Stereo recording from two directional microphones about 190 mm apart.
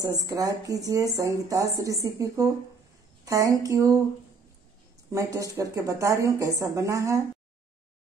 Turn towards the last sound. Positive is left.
turn(degrees=-15)  # may be behind; listen again after turning